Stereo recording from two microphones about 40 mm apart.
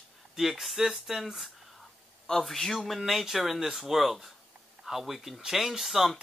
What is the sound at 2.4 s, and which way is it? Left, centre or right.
Speech, centre.